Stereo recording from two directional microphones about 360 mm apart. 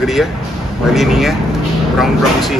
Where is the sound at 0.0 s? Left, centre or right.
Centre.